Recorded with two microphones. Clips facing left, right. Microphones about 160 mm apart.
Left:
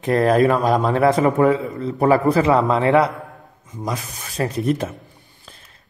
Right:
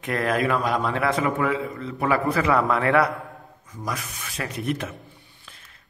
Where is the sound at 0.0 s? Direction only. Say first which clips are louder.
Left 8 dB; 35° left (ahead or behind).